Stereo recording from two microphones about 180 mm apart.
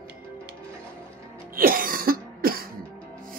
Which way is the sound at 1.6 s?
55° right (ahead or behind).